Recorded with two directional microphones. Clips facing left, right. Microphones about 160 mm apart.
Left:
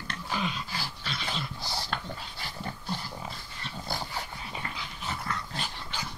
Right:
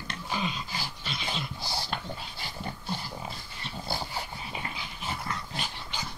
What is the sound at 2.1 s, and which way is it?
Dog, 25° right (ahead or behind).